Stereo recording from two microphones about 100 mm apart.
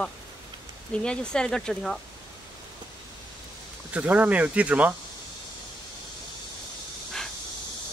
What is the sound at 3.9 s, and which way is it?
Speech, 15° right (ahead or behind).